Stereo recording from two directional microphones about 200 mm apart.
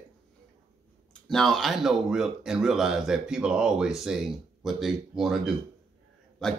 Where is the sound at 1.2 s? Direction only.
Centre (ahead or behind).